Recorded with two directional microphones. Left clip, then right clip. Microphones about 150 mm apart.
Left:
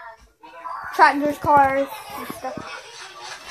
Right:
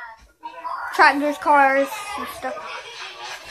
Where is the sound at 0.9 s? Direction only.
Centre (ahead or behind).